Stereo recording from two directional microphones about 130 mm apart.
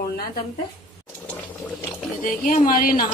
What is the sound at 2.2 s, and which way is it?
Speech, 85° left.